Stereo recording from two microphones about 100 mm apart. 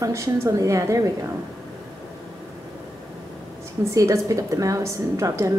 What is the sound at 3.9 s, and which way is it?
A woman's voice, 30° right (ahead or behind).